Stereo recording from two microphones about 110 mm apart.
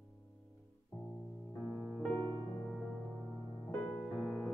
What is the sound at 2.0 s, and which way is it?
Music, 15° left (ahead or behind).